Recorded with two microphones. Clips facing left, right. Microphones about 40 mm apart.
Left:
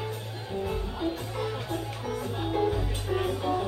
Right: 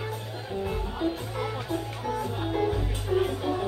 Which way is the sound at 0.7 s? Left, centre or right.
Centre.